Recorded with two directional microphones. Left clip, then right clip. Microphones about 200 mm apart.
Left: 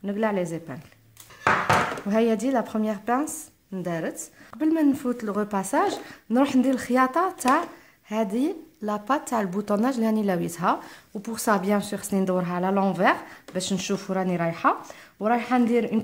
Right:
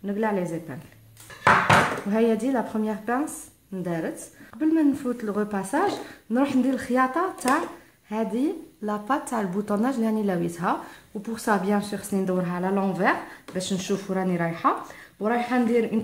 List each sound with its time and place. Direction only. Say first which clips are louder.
0.0 s a woman's voice: even; 40° left (ahead or behind)
2.0 s a woman's voice: even; 40° left (ahead or behind)